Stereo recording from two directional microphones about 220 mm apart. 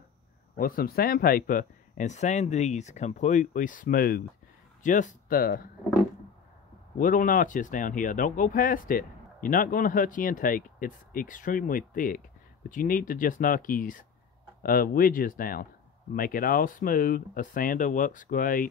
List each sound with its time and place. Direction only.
0.6 s speech: 40° left (ahead or behind)
7.0 s speech: 35° left (ahead or behind)